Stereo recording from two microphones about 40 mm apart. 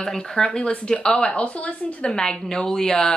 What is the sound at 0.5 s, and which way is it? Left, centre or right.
A woman's voice, left.